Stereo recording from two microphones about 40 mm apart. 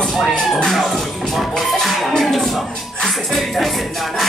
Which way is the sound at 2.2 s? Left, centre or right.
Centre.